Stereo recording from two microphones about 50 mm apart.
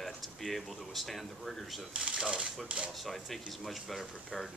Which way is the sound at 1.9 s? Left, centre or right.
Centre.